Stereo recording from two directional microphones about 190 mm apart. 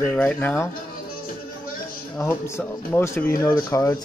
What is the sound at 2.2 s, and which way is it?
Speech, 15° left (ahead or behind).